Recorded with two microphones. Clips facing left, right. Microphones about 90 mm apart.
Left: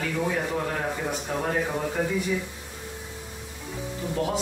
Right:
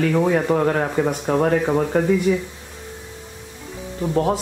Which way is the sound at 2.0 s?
55° right (ahead or behind).